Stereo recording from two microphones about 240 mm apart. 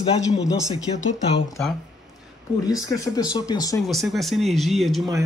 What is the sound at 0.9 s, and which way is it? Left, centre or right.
Speech, left.